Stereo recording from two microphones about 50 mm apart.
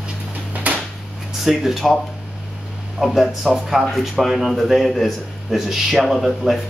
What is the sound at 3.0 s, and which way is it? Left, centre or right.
Speech, centre.